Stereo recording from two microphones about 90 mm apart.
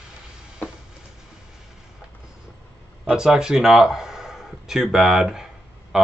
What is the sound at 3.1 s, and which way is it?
Speech, 5° right (ahead or behind).